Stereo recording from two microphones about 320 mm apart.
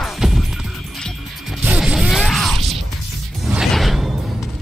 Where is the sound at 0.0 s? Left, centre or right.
Centre.